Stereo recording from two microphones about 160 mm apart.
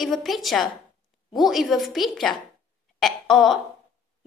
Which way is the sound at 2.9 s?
Centre (ahead or behind).